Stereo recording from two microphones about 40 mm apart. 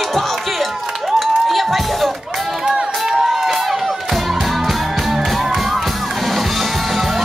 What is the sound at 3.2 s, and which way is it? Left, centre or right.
Music, centre.